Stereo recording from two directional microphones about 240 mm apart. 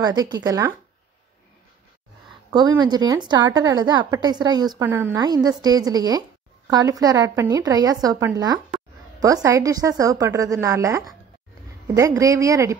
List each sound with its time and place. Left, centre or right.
0.0 s a woman's voice: centre
2.5 s a woman's voice: centre